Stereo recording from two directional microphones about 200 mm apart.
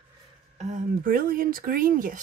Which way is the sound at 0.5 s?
35° right (ahead or behind).